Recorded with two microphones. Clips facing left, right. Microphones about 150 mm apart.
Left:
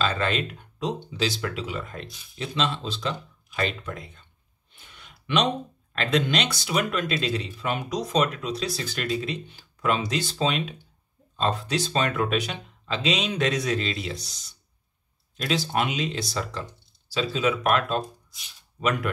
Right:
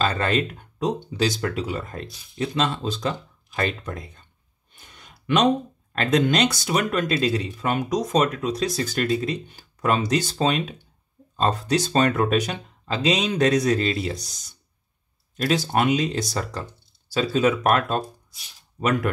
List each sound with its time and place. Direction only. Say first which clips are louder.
0.0 s speech: right 3 dB; 45° right (ahead or behind)
4.7 s a sound: right 2 dB; 40° right (ahead or behind)
5.9 s speech: right 4 dB; 45° right (ahead or behind)